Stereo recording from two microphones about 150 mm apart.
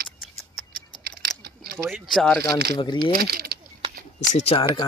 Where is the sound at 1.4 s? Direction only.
90° right.